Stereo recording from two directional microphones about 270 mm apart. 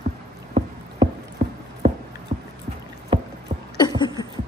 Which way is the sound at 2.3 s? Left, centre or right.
Right.